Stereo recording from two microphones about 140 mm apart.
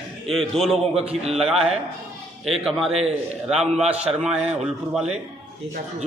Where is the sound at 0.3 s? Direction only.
Centre (ahead or behind).